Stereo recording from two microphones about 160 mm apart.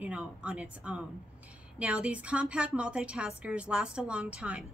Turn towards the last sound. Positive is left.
turn(degrees=-5)  # may be behind; listen again after turning